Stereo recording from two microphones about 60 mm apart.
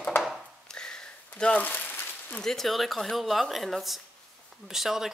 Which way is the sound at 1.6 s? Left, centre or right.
Left.